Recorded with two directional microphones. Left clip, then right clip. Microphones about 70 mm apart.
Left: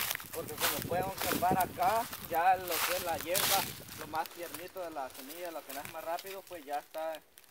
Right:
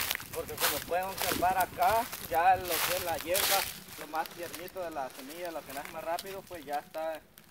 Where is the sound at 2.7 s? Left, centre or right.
Right.